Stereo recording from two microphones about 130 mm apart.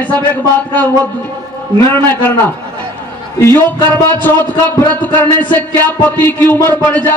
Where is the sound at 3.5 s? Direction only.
15° left (ahead or behind).